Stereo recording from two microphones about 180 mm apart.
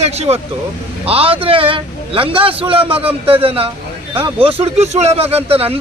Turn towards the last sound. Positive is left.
turn(degrees=-30)  # may be behind; listen again after turning